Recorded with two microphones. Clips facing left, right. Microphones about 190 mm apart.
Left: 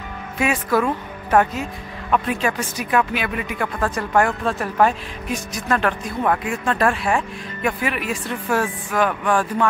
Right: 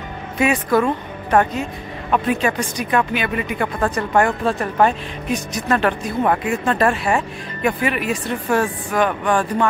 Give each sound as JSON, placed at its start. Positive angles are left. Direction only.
{"t": 0.4, "sound": "speech", "side_deg": 0}